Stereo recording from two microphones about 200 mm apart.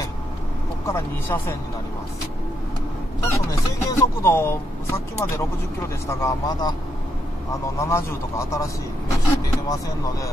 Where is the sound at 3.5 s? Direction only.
15° left (ahead or behind).